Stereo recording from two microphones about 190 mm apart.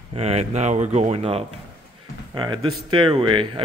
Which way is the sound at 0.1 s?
35° right (ahead or behind).